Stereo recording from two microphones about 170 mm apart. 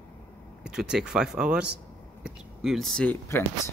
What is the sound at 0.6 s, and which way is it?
Speech, 5° right (ahead or behind).